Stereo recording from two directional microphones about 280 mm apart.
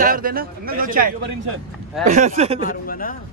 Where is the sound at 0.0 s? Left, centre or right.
Right.